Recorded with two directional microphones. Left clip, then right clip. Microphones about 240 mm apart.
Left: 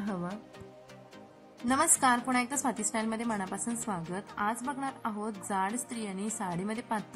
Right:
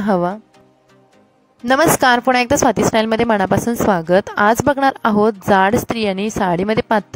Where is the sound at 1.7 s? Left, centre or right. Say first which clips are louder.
Right 14 dB; right.